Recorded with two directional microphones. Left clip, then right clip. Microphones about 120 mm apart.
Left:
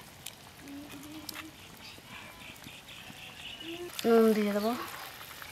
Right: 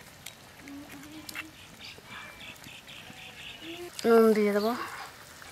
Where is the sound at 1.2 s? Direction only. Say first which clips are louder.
Right 5 dB; centre (ahead or behind).